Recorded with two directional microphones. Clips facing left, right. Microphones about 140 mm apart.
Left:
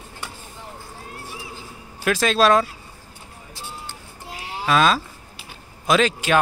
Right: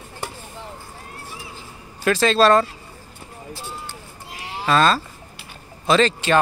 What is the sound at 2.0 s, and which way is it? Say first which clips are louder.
Speech: right 2 dB; 5° left (ahead or behind).